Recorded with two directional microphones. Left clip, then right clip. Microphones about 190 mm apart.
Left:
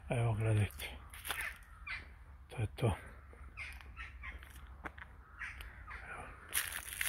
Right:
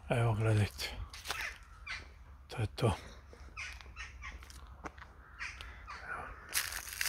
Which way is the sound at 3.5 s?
30° right (ahead or behind).